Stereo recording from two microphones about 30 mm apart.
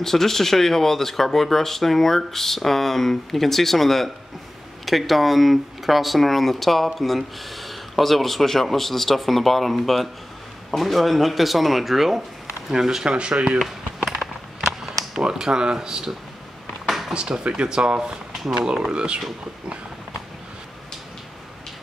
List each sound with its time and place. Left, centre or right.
0.0 s speech: centre
12.7 s speech: centre
13.0 s speech: right
14.6 s a sound: centre
15.3 s speech: right
16.8 s drawer open or close: centre
17.1 s speech: right